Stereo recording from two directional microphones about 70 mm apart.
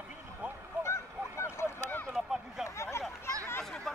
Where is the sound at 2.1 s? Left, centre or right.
Centre.